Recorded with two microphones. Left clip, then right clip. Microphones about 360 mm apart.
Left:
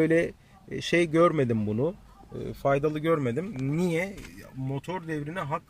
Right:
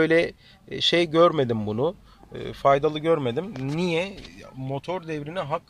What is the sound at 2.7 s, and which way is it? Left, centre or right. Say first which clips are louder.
Speech: right 3 dB; centre.